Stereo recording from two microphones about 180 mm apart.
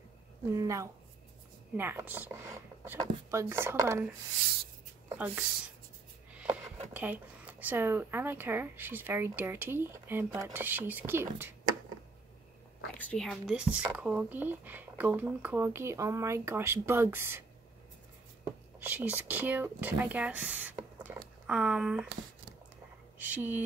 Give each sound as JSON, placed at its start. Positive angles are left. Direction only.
{"t": 0.6, "sound": "speech", "side_deg": -15}
{"t": 5.1, "sound": "speech", "side_deg": -10}
{"t": 6.3, "sound": "a sound", "side_deg": -10}
{"t": 6.9, "sound": "speech", "side_deg": -10}
{"t": 12.9, "sound": "speech", "side_deg": 5}
{"t": 18.8, "sound": "speech", "side_deg": -10}
{"t": 23.1, "sound": "speech", "side_deg": -10}